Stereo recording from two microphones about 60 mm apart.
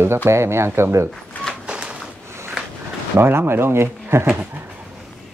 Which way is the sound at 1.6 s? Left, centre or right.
Centre.